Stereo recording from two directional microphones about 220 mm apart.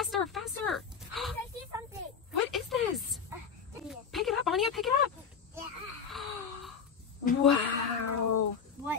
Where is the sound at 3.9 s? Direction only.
Centre (ahead or behind).